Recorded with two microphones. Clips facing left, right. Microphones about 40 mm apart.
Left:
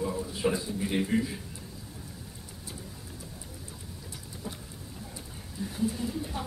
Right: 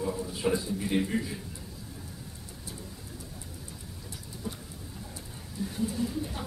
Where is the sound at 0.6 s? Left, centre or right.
Centre.